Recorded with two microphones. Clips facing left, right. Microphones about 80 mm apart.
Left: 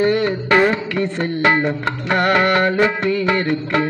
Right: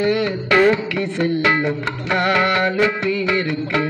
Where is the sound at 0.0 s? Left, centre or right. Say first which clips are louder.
Left 2 dB; left.